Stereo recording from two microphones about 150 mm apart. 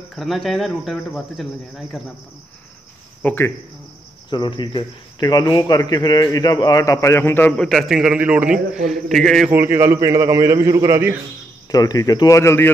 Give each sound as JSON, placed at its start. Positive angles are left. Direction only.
{"t": 0.1, "sound": "speech", "side_deg": 0}
{"t": 3.2, "sound": "cricket", "side_deg": 15}
{"t": 4.3, "sound": "speech", "side_deg": 30}
{"t": 9.5, "sound": "a man's voice", "side_deg": -15}
{"t": 11.7, "sound": "speech", "side_deg": 25}